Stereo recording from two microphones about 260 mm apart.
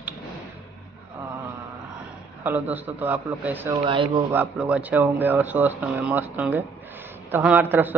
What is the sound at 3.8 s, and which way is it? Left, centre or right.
Speech, centre.